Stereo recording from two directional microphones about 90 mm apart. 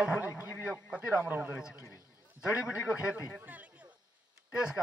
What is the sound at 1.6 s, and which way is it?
A man's voice, 10° right (ahead or behind).